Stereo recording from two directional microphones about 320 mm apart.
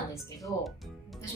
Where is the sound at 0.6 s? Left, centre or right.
Centre.